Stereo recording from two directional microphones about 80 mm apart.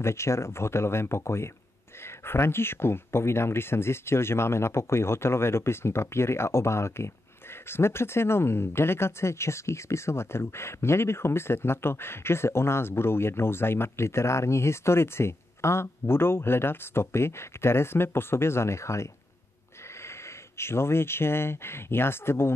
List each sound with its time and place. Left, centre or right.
0.0 s speech: left
20.5 s speech: left